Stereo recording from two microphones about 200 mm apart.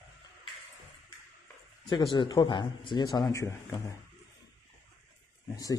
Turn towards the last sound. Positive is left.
turn(degrees=20)  # may be behind; listen again after turning